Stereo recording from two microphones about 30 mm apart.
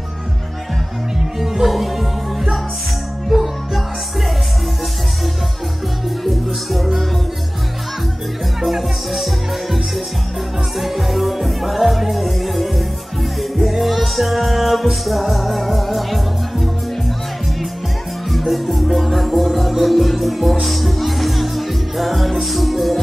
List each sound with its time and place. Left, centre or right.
1.4 s music: centre
6.2 s music: centre
8.6 s music: centre
18.3 s music: centre